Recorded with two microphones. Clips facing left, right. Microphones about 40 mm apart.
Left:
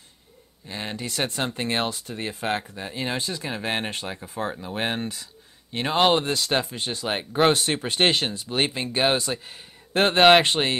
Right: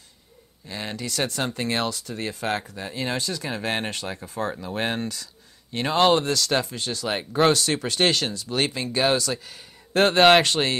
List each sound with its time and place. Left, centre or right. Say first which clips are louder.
0.7 s speech: even; left